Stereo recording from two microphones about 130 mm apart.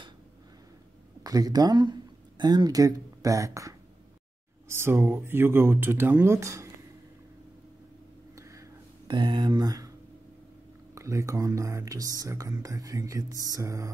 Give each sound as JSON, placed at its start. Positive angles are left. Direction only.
{"t": 1.2, "sound": "speech", "side_deg": -30}
{"t": 8.4, "sound": "a sound", "side_deg": -25}
{"t": 11.0, "sound": "speech", "side_deg": -25}